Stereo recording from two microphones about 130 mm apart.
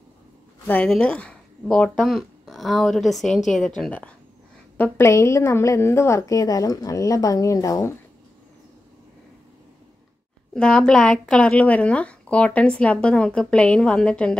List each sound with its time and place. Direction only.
0.7 s a woman's voice: 10° left (ahead or behind); by 7.9 s 25° left (ahead or behind)
10.5 s speech: 5° left (ahead or behind)